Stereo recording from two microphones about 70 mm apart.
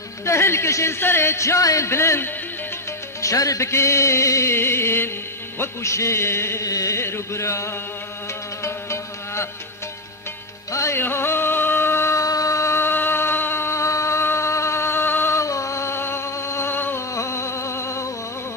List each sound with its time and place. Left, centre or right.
0.2 s speech: left
3.2 s music: left
5.6 s speech: left
6.6 s music: left
7.0 s speech: left
8.6 s music: left
10.7 s music: left
11.0 s music: left
12.3 s a sound: left
15.3 s music: left
17.1 s a sound: left